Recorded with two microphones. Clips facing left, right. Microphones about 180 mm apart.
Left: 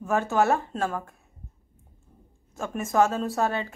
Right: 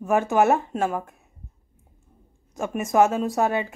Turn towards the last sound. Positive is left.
turn(degrees=-15)  # may be behind; listen again after turning